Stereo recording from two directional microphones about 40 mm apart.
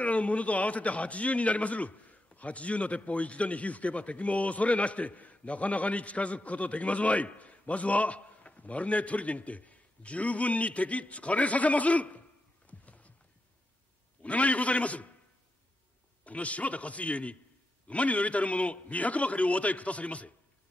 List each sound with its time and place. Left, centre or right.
0.0 s a man's voice: left
12.6 s a sound: left
14.2 s a man's voice: left
16.3 s a man's voice: left